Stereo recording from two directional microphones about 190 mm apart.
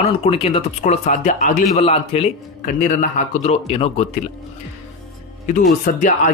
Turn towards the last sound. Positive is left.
turn(degrees=40)  # may be behind; listen again after turning